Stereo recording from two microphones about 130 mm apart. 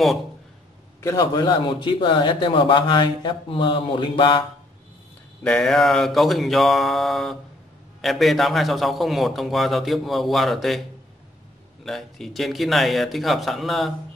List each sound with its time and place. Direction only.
1.0 s a man's voice: 30° left (ahead or behind)
5.4 s a man's voice: 5° left (ahead or behind)
11.8 s a man's voice: centre (ahead or behind)